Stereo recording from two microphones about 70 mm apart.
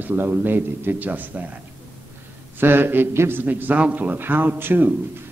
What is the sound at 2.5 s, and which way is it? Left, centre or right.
A man's voice, right.